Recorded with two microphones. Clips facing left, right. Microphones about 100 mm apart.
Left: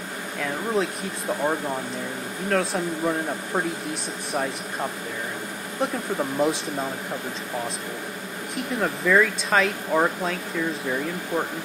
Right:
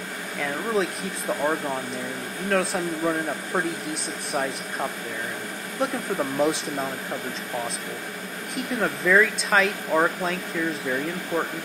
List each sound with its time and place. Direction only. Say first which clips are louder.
0.4 s speech: even; centre (ahead or behind)
8.5 s speech: even; centre (ahead or behind)